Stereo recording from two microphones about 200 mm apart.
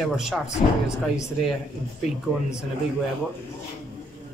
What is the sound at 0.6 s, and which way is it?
Speech, 30° left (ahead or behind).